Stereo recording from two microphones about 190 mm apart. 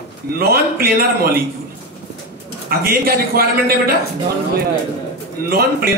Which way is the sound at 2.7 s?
50° right (ahead or behind).